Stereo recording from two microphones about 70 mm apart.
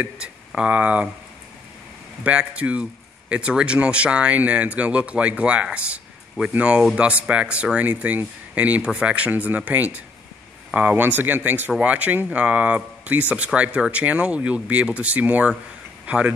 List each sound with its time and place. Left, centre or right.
0.6 s speech: centre
2.2 s speech: centre